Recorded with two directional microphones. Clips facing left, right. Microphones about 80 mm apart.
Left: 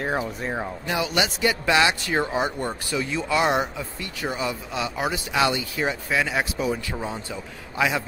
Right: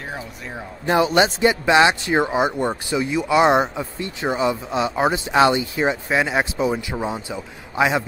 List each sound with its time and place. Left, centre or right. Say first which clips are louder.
0.2 s speech: left 5 dB; left
0.8 s a man's voice: right 9 dB; right